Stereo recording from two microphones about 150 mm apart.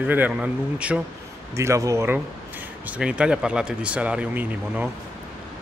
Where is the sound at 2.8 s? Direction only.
5° right (ahead or behind).